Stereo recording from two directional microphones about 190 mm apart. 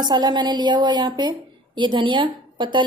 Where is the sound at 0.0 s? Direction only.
20° right (ahead or behind).